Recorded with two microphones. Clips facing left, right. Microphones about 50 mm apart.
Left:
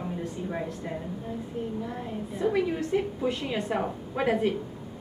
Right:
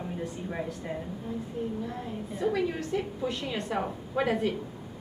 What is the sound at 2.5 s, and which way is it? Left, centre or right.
A woman's voice, centre.